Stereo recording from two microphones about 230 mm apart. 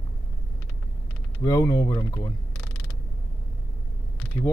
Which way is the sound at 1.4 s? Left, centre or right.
Centre.